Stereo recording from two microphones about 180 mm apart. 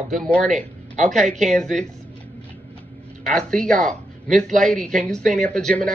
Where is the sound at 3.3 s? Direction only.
5° left (ahead or behind).